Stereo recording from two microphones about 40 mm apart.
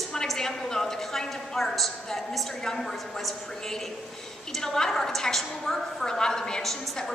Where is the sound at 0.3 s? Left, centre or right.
Centre.